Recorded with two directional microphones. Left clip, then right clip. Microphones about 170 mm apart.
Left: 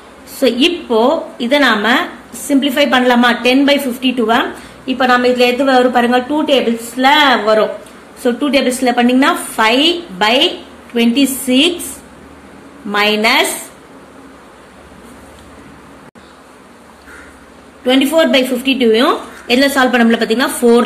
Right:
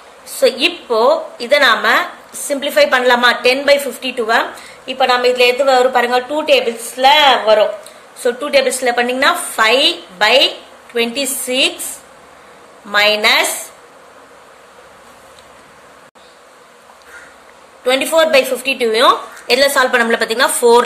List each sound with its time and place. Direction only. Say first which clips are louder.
0.4 s a woman's voice: left 1 dB; 30° right (ahead or behind)
12.9 s a woman's voice: even; 35° right (ahead or behind)
18.7 s a woman's voice: left 1 dB; 35° right (ahead or behind)